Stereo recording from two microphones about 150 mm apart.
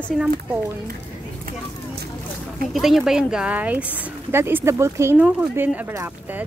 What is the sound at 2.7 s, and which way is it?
Speech, centre (ahead or behind).